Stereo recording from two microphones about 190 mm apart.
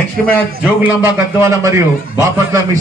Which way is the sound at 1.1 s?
15° right (ahead or behind).